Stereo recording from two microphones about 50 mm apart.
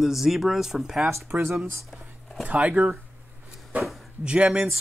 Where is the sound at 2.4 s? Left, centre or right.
Right.